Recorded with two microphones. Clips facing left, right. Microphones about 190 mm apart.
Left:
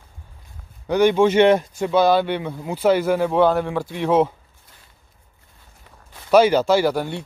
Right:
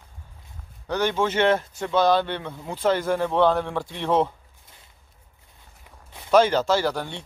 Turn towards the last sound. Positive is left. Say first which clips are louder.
# left 5 dB
turn(degrees=10)  # may be behind; listen again after turning